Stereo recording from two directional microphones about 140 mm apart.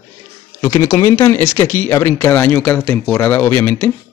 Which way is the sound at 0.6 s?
20° left (ahead or behind).